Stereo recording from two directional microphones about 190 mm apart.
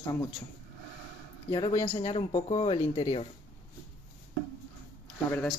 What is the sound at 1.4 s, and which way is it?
Speech, 25° left (ahead or behind).